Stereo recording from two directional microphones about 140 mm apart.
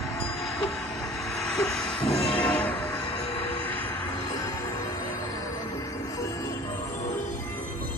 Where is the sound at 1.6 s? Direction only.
5° left (ahead or behind).